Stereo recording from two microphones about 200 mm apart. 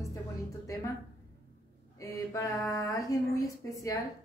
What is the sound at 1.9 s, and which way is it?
A woman's voice, 15° left (ahead or behind).